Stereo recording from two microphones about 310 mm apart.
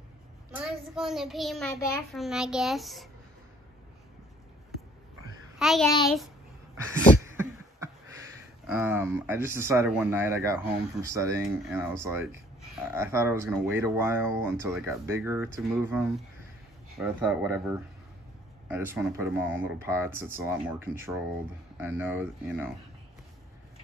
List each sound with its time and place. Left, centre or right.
0.9 s a child's voice: centre
5.6 s a child's voice: centre
6.8 s a sound: centre
8.6 s a child's voice: centre